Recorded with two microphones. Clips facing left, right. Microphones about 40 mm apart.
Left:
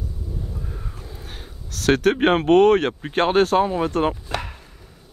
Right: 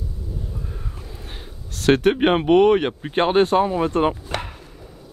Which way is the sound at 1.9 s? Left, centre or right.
Right.